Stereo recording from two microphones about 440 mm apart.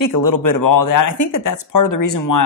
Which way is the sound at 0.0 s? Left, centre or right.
Left.